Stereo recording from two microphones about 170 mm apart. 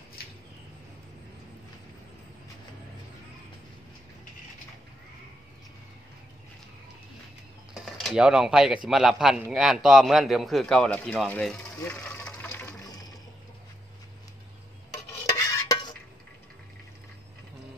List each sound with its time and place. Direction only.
0.2 s a sound: 65° left (ahead or behind)
7.7 s speech: centre (ahead or behind)
15.2 s stir: 20° left (ahead or behind)